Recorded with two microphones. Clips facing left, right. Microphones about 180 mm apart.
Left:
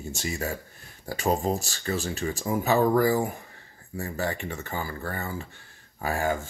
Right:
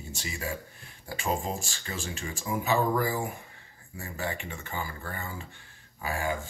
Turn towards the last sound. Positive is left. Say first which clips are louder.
# left 4 dB
turn(degrees=45)  # may be behind; listen again after turning